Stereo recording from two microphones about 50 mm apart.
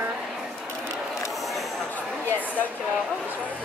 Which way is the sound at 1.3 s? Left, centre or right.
Centre.